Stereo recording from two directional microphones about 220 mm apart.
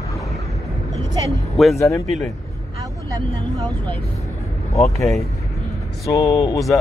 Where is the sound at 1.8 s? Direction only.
15° left (ahead or behind).